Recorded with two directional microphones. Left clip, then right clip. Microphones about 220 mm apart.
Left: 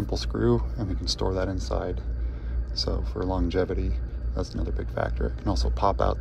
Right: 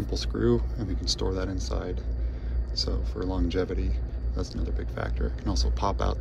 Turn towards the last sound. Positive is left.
turn(degrees=-15)  # may be behind; listen again after turning